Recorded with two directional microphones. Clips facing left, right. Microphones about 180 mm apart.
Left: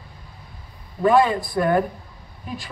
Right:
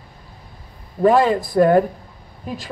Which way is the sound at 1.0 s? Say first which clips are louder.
Right 2 dB; 40° right (ahead or behind).